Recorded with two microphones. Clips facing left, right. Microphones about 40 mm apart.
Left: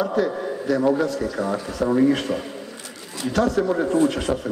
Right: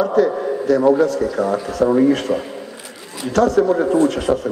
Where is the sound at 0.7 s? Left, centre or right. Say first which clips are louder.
Right 6 dB; centre.